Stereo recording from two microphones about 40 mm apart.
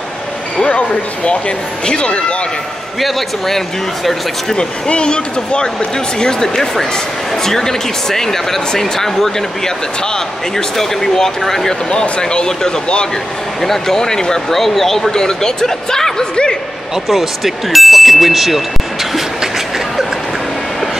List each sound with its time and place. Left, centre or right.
0.7 s speech: left
3.0 s speech: centre
4.6 s speech: left
10.8 s speech: centre
11.9 s speech: centre
13.6 s speech: centre
16.9 s speech: centre